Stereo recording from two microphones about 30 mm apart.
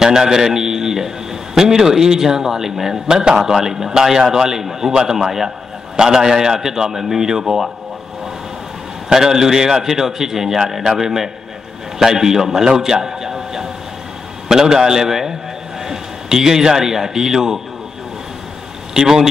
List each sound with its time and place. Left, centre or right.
0.0 s a man's voice: right
9.1 s a man's voice: centre
18.9 s a man's voice: centre